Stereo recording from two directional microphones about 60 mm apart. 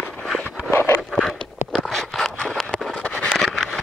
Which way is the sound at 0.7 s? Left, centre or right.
Left.